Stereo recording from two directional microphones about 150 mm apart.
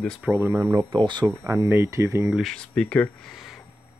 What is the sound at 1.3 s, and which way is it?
Speech, 20° right (ahead or behind).